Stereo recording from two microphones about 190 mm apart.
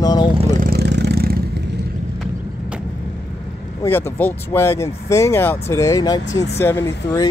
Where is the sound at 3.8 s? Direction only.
10° left (ahead or behind).